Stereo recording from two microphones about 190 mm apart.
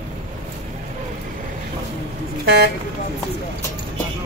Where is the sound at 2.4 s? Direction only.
60° right (ahead or behind).